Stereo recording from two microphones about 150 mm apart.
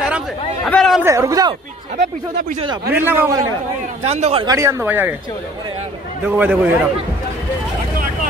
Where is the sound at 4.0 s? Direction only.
45° right (ahead or behind).